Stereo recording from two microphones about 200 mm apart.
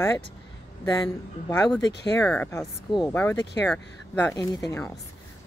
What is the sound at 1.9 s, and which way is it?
Speech, 60° left (ahead or behind).